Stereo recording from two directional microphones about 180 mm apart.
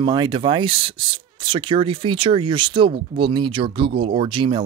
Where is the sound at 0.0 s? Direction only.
25° right (ahead or behind).